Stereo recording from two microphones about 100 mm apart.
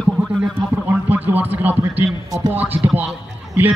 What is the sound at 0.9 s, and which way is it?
A man's voice, 15° right (ahead or behind).